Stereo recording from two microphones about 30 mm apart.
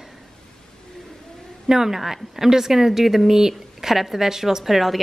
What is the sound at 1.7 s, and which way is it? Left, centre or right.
A woman's voice, centre.